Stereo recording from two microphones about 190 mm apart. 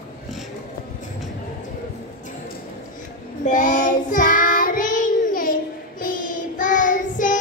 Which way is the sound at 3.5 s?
40° left (ahead or behind).